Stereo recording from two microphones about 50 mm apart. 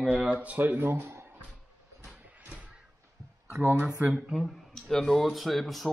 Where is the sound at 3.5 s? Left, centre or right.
Right.